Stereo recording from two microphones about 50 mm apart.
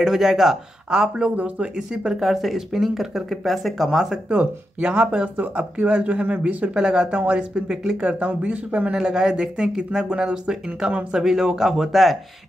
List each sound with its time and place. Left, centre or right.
0.0 s speech: centre
4.3 s speech: right
5.6 s speech: right
6.7 s speech: centre
8.9 s speech: centre